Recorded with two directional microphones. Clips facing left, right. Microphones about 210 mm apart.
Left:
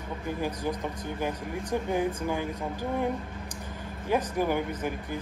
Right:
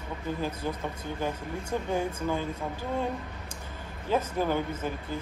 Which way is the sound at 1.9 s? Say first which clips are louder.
Even; 15° left (ahead or behind).